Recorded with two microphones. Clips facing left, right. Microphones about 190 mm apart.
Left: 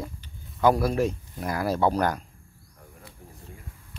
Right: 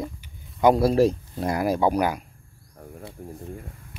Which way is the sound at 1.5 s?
15° right (ahead or behind).